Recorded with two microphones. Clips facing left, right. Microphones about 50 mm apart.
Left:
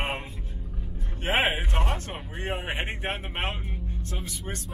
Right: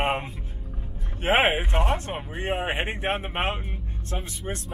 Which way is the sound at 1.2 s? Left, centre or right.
Right.